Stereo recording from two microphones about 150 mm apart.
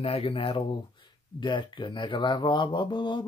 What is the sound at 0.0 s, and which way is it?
Speech, 40° left (ahead or behind).